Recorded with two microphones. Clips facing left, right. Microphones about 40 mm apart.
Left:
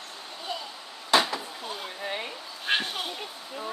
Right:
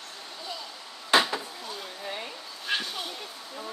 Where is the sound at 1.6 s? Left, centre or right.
Left.